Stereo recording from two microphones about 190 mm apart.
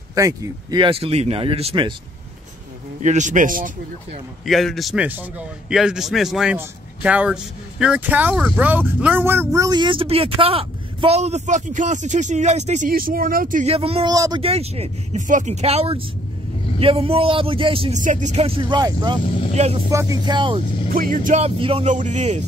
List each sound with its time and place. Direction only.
0.1 s speech: 15° right (ahead or behind)
3.0 s speech: 40° right (ahead or behind)
4.5 s a man's voice: centre (ahead or behind); by 13.7 s 45° right (ahead or behind)
13.7 s speech: 30° right (ahead or behind)
14.1 s speech: 20° right (ahead or behind)
14.4 s speech: 30° right (ahead or behind)
18.0 s speech: 40° right (ahead or behind); by 19.1 s 20° right (ahead or behind)
19.5 s speech: 35° right (ahead or behind)
19.9 s speech: 15° right (ahead or behind)
20.9 s speech: 50° right (ahead or behind)
21.5 s speech: 30° right (ahead or behind)
21.9 s speech: 40° right (ahead or behind)